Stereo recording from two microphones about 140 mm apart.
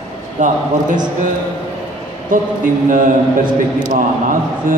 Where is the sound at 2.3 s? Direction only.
75° right (ahead or behind).